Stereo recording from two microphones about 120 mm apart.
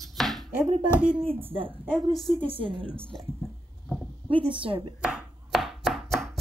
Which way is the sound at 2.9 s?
10° left (ahead or behind).